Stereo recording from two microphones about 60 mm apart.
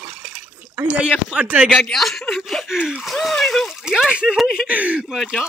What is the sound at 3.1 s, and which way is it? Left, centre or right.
Speech, centre.